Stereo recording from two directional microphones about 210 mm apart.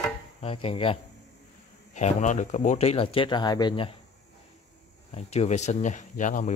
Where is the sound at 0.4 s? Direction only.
25° left (ahead or behind).